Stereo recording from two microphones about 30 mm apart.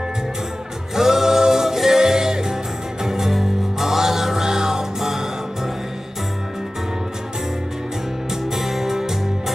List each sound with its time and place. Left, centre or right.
0.9 s music: centre
8.5 s music: centre